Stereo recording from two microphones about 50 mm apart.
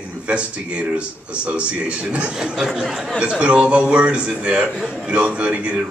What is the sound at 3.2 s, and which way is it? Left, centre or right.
Speech, right.